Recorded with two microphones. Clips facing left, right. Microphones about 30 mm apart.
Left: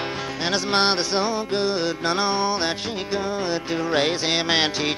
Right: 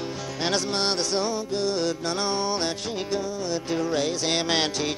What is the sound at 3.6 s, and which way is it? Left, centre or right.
Music, left.